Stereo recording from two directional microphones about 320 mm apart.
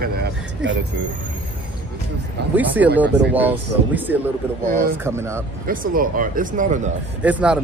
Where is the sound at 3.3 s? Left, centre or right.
Centre.